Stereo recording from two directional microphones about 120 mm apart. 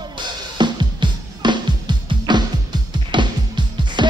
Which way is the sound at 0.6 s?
40° right (ahead or behind).